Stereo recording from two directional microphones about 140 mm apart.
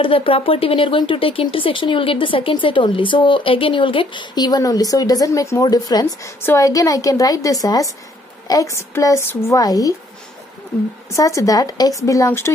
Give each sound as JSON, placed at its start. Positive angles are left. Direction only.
{"t": 0.0, "sound": "a woman's voice", "side_deg": 40}
{"t": 11.1, "sound": "a woman's voice", "side_deg": 25}